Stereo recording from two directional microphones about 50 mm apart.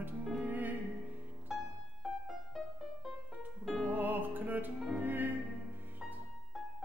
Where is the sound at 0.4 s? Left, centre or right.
Right.